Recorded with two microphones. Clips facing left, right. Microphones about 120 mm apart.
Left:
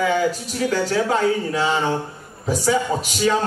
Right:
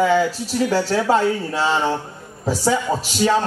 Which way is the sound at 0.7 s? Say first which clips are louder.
Right 2 dB; 30° right (ahead or behind).